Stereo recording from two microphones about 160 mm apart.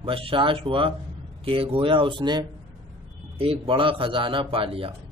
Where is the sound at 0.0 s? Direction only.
35° right (ahead or behind).